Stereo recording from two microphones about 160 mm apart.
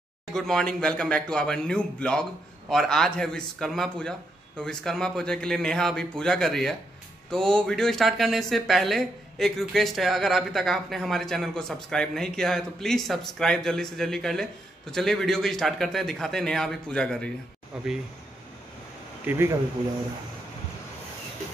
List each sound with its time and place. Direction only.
0.3 s speech: 5° left (ahead or behind)
19.2 s speech: 15° right (ahead or behind)